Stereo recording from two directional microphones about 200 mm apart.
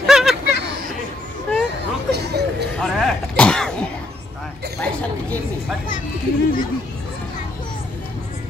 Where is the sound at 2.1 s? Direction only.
55° right (ahead or behind).